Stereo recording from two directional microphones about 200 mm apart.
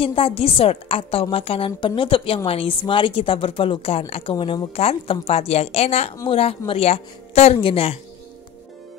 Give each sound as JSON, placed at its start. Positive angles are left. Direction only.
{"t": 0.0, "sound": "a woman's voice", "side_deg": 25}